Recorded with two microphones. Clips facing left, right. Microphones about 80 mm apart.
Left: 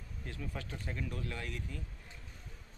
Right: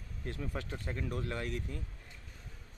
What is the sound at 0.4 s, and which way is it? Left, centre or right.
Speech, right.